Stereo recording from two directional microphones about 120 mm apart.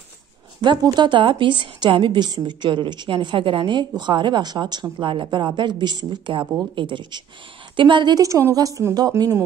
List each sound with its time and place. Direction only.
0.9 s a woman's voice: 40° right (ahead or behind)